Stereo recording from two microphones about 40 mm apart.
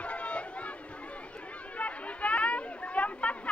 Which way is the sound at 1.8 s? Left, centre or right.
Left.